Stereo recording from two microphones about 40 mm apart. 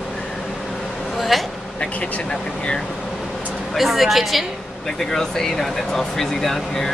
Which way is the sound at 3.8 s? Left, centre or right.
Centre.